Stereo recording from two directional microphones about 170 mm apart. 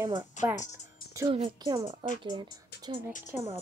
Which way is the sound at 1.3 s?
35° right (ahead or behind).